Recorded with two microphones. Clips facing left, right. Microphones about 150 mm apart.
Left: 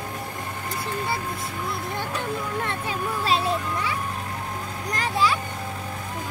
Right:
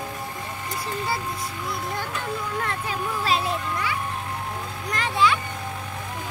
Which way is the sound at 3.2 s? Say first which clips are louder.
Left 2 dB; 30° left (ahead or behind).